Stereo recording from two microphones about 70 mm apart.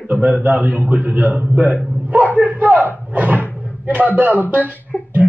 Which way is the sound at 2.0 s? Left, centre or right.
Right.